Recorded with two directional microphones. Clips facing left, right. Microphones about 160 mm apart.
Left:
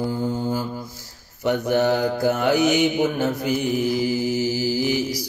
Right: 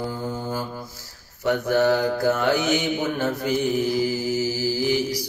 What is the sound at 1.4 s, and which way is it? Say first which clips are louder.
Mantra: even; 20° left (ahead or behind).